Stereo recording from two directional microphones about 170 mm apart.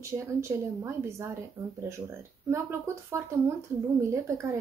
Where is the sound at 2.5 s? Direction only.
15° right (ahead or behind).